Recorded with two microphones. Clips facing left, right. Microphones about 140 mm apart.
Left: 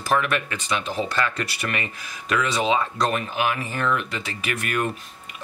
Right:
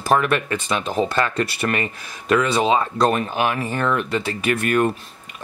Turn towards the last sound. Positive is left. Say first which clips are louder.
# right 7 dB
turn(degrees=-40)  # may be behind; listen again after turning